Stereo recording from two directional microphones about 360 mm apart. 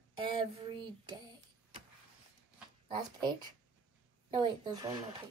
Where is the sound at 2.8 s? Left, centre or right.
Centre.